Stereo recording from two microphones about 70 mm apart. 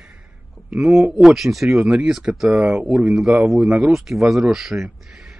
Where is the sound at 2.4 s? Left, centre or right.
Centre.